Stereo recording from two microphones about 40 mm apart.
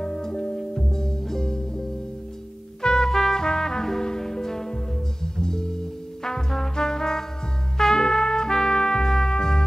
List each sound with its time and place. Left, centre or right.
0.0 s music: centre
2.8 s trumpet: centre
5.2 s music: centre